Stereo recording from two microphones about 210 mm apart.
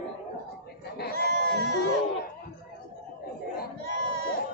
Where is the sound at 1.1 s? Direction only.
50° right (ahead or behind).